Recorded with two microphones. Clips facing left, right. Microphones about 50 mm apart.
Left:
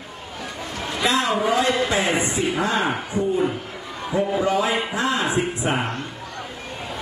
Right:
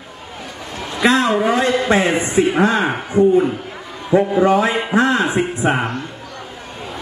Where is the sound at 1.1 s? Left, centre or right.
Right.